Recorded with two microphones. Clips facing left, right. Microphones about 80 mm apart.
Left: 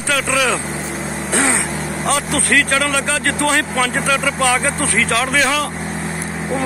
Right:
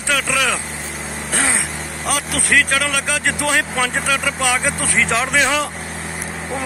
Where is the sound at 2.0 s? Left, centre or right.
Centre.